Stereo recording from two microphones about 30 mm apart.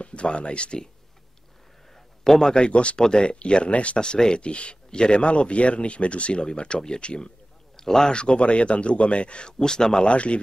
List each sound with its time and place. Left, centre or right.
0.0 s speech: left
2.0 s a sound: centre
2.5 s speech: left
3.0 s speech: left
3.3 s speech: left
4.0 s speech: left
4.4 s speech: left
7.7 s a sound: centre
8.1 s speech: left
9.6 s speech: centre
10.0 s speech: left